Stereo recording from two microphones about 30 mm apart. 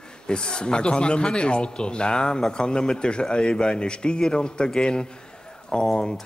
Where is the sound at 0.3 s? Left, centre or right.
Left.